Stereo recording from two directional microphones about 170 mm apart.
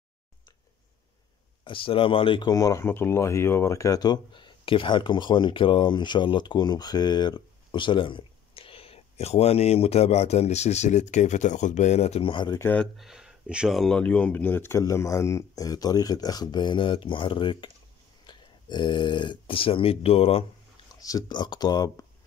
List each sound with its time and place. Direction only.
1.6 s speech: 30° left (ahead or behind)
12.5 s speech: 10° left (ahead or behind)
12.9 s speech: centre (ahead or behind); by 20.4 s 35° left (ahead or behind)
20.9 s speech: 20° left (ahead or behind)